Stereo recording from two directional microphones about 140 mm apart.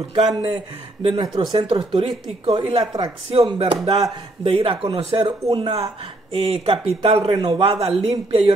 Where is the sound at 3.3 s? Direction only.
45° right (ahead or behind).